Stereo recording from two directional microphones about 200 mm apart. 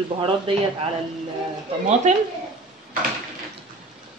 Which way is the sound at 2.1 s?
35° right (ahead or behind).